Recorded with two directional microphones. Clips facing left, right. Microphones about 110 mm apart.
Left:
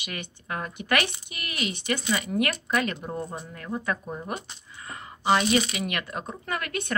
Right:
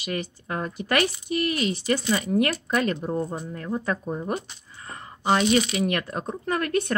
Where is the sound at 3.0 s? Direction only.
5° right (ahead or behind).